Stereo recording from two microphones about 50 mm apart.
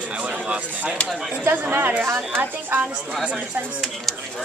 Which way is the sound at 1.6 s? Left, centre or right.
Right.